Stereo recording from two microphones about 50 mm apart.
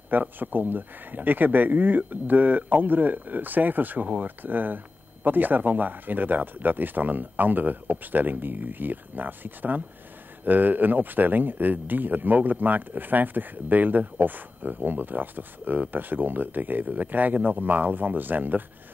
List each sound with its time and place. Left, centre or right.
0.4 s speech: right